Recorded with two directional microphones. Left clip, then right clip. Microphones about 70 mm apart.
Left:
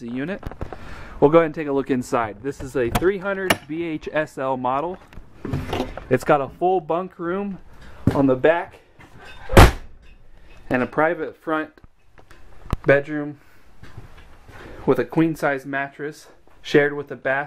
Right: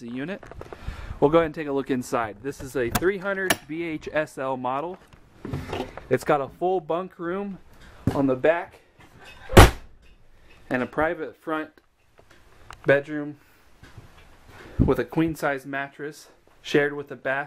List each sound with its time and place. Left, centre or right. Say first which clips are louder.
0.0 s speech: left 4 dB; centre
5.4 s a sound: left 5 dB; centre
5.9 s speech: left 4 dB; centre
9.5 s a sound: left 1 dB; centre
10.7 s speech: left 5 dB; centre
12.8 s speech: left 3 dB; centre
14.7 s speech: left 3 dB; centre